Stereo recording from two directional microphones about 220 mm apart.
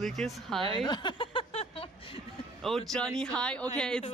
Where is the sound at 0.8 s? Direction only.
20° left (ahead or behind).